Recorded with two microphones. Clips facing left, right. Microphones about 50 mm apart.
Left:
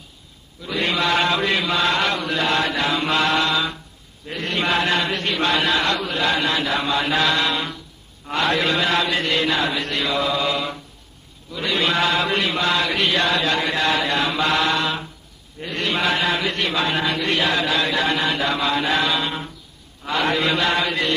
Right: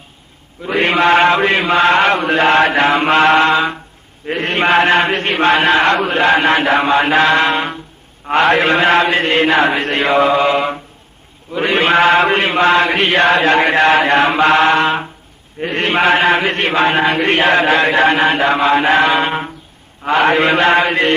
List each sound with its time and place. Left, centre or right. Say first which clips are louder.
0.6 s chant: right 8 dB; right